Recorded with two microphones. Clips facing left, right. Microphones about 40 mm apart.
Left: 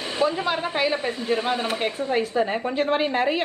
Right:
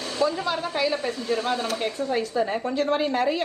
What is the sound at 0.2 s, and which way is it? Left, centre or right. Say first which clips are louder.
Speech: left 1 dB; left.